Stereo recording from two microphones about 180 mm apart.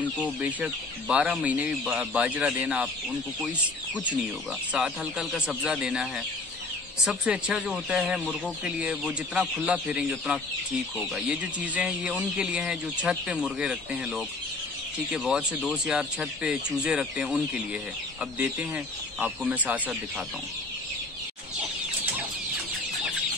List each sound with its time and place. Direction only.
0.2 s speech: 10° right (ahead or behind)
4.7 s speech: centre (ahead or behind)
7.1 s speech: 5° right (ahead or behind)